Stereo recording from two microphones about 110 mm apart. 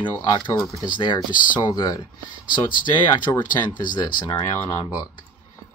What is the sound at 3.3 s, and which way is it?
Speech, 35° left (ahead or behind).